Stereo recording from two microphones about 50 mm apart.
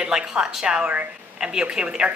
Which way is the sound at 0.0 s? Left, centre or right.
Centre.